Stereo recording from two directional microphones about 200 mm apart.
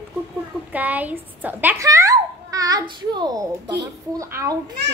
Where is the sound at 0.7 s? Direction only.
10° right (ahead or behind).